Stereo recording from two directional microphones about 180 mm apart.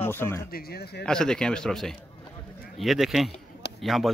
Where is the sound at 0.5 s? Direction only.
60° left (ahead or behind).